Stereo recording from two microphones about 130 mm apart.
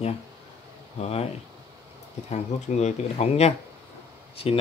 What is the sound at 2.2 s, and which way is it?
Speech, 55° left (ahead or behind).